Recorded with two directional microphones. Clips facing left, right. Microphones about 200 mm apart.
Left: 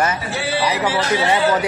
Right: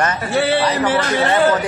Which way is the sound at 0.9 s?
55° right (ahead or behind).